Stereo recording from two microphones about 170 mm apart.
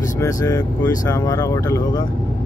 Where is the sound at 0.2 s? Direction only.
20° left (ahead or behind).